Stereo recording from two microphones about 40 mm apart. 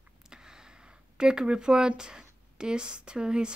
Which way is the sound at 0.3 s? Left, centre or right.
Centre.